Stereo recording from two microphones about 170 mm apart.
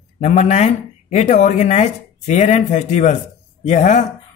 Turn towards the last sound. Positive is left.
turn(degrees=45)  # may be behind; listen again after turning